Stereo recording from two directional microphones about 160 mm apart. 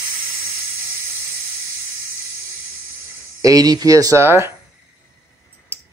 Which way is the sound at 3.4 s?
20° right (ahead or behind).